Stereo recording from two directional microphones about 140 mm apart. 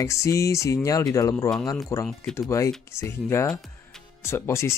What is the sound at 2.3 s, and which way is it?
Speech, 5° left (ahead or behind).